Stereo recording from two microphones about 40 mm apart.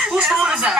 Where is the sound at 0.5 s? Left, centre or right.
Centre.